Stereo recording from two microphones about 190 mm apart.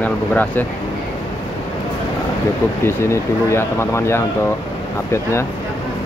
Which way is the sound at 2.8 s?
15° left (ahead or behind).